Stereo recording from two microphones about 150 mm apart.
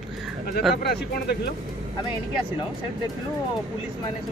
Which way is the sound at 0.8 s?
90° left.